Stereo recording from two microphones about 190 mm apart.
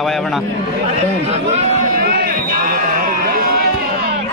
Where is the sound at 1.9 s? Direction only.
50° right (ahead or behind).